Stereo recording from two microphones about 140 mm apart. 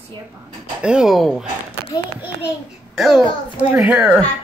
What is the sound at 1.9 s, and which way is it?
Speech, 30° left (ahead or behind).